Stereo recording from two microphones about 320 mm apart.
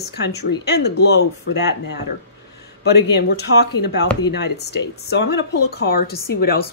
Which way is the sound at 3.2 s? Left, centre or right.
Left.